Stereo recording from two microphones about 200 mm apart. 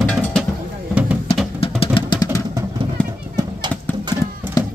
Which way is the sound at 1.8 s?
25° left (ahead or behind).